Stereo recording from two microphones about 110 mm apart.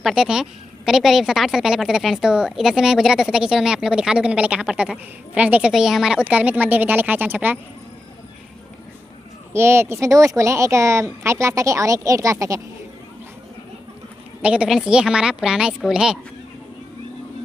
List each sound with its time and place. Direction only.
0.0 s speech: 5° right (ahead or behind)
9.5 s speech: 20° right (ahead or behind)
14.4 s a woman's voice: 10° right (ahead or behind)